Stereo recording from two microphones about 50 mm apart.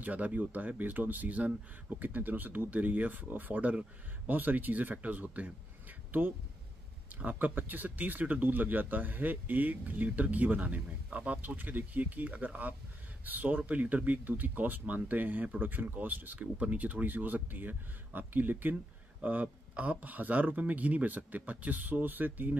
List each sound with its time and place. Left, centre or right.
0.0 s speech: right